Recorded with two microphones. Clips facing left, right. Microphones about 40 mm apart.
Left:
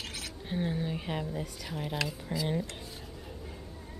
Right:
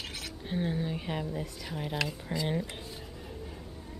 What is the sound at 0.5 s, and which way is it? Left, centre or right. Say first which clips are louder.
Speech: right 1 dB; centre.